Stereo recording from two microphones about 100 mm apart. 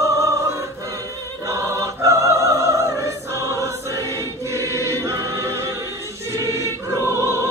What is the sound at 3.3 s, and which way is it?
Choir, 30° right (ahead or behind).